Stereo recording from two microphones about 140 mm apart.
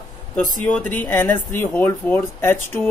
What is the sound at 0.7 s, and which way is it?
Speech, 10° left (ahead or behind).